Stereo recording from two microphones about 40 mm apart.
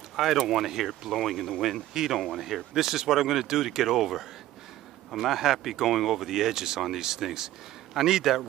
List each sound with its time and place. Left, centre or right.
0.1 s speech: centre